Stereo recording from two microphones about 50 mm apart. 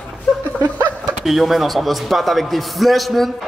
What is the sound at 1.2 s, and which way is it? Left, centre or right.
A man's voice, centre.